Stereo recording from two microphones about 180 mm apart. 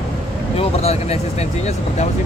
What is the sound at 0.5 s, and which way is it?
Speech, 35° left (ahead or behind).